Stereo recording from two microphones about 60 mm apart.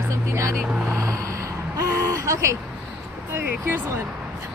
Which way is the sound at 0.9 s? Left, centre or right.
Right.